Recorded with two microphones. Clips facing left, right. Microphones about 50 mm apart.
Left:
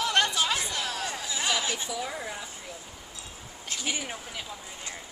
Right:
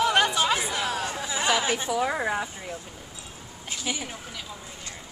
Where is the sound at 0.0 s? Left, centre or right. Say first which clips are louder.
Right 4 dB; centre.